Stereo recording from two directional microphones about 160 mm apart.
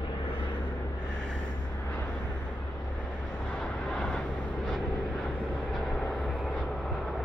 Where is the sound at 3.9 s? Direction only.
5° left (ahead or behind).